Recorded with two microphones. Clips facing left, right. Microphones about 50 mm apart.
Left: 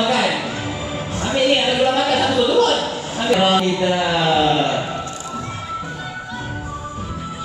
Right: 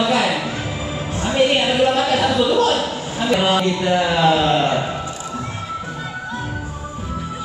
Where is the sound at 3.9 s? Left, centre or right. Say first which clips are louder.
Right 5 dB; centre.